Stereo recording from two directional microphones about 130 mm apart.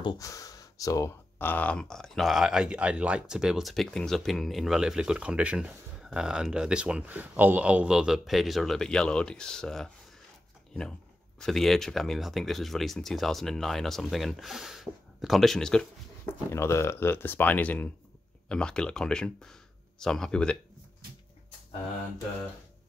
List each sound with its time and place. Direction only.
0.0 s speech: 25° left (ahead or behind); by 15.9 s 5° left (ahead or behind)
16.4 s speech: 20° left (ahead or behind)